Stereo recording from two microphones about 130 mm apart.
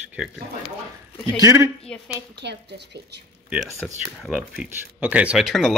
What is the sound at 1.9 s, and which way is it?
Speech, 5° left (ahead or behind).